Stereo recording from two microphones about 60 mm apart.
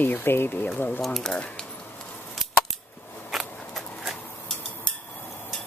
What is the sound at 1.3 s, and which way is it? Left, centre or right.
Speech, centre.